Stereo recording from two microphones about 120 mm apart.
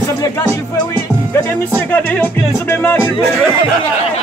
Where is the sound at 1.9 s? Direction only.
15° left (ahead or behind).